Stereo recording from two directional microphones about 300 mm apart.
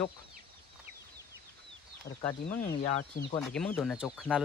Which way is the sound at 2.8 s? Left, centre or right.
Centre.